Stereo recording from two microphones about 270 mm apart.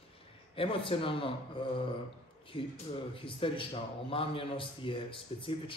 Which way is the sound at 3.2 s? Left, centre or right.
Centre.